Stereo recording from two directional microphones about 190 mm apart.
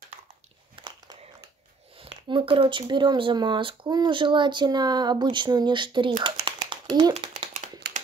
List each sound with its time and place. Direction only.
2.0 s speech: 25° right (ahead or behind)